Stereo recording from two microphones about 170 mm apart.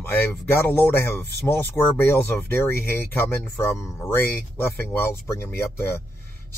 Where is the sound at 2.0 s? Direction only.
15° left (ahead or behind).